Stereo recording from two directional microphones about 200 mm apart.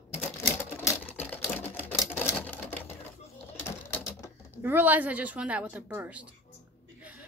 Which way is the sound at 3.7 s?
15° left (ahead or behind).